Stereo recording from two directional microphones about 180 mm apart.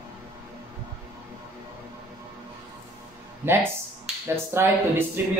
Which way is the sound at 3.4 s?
10° right (ahead or behind).